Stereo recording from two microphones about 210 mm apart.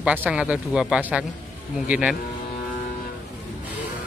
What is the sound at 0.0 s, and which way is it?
Speech, 5° right (ahead or behind).